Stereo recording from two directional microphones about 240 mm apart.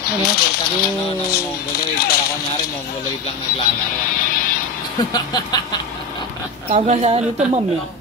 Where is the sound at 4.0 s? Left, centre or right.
Left.